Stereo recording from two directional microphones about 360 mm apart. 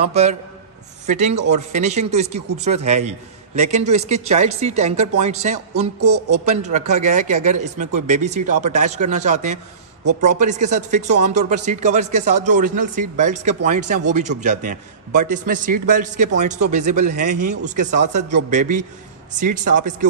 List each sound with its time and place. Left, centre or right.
0.0 s a man's voice: centre
5.9 s speech: right
6.5 s speech: centre
10.7 s speech: centre
19.6 s speech: right